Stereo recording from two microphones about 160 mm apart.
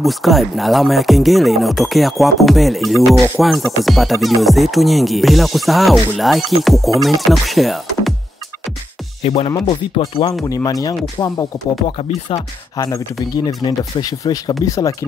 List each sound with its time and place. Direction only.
0.0 s speech: centre (ahead or behind)
9.2 s speech: 40° left (ahead or behind)
10.4 s speech: 20° left (ahead or behind)
12.7 s speech: 25° left (ahead or behind)